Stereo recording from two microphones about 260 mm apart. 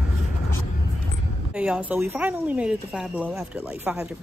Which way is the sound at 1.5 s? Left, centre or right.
Centre.